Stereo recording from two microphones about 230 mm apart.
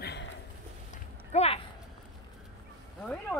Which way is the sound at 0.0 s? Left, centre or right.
Left.